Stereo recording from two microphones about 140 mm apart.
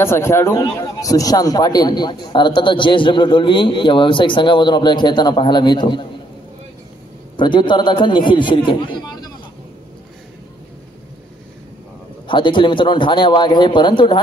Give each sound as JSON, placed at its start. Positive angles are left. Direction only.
{"t": 0.0, "sound": "a man's voice", "side_deg": 20}
{"t": 7.3, "sound": "a man's voice", "side_deg": 35}
{"t": 12.3, "sound": "a man's voice", "side_deg": 35}